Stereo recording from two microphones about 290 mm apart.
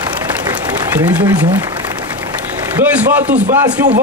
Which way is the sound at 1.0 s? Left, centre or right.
Centre.